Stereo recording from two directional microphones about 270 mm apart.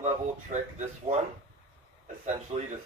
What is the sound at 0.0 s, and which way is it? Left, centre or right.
Speech, right.